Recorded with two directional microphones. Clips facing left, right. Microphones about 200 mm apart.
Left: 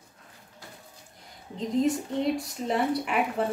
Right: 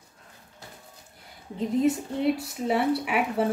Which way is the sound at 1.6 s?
5° right (ahead or behind).